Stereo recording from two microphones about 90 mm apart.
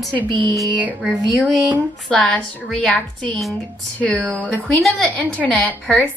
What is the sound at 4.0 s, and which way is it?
Speech, 10° left (ahead or behind).